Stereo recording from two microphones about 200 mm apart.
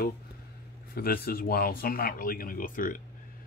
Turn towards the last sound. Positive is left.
turn(degrees=45)  # may be behind; listen again after turning